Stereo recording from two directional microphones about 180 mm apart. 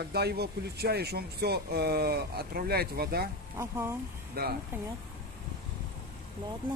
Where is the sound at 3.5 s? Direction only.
15° right (ahead or behind).